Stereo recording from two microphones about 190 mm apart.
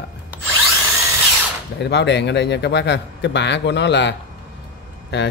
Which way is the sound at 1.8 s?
65° left (ahead or behind).